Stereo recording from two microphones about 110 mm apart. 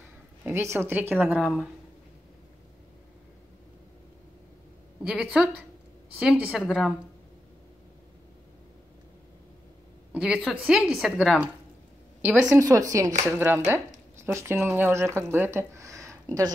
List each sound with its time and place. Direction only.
0.4 s a woman's voice: 20° right (ahead or behind); by 1.7 s 5° right (ahead or behind)
5.0 s a woman's voice: 10° right (ahead or behind)
10.1 s a woman's voice: 10° right (ahead or behind)
12.4 s speech: 30° right (ahead or behind)